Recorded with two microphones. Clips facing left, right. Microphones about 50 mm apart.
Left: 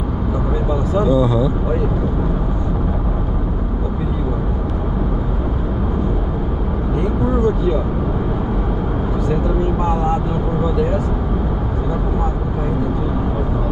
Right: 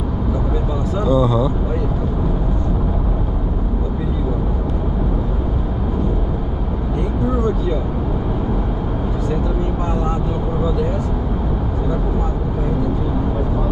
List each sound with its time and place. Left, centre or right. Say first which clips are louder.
1.1 s speech: right 2 dB; centre